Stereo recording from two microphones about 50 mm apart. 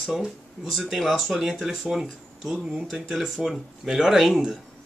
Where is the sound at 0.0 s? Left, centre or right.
Centre.